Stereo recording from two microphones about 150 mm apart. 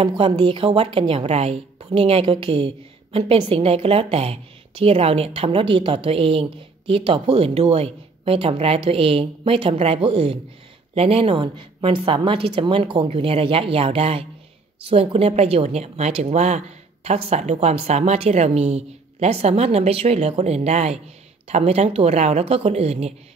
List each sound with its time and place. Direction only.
0.2 s a woman's voice: 35° right (ahead or behind)